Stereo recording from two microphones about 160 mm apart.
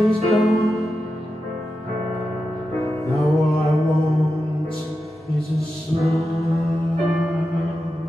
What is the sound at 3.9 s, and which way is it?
Music, 20° right (ahead or behind).